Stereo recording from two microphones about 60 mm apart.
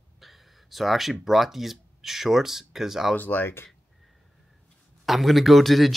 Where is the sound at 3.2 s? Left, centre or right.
Left.